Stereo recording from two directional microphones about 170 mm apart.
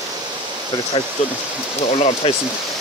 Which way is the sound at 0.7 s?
25° left (ahead or behind).